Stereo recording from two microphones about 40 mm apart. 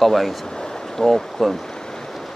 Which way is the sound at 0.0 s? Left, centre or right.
Centre.